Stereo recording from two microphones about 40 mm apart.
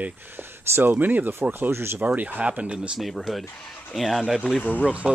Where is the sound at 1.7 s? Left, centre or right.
Right.